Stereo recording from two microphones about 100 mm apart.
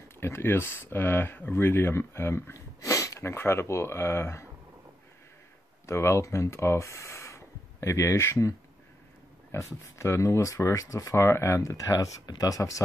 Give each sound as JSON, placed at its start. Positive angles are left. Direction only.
{"t": 0.2, "sound": "speech", "side_deg": 25}
{"t": 5.9, "sound": "speech", "side_deg": 25}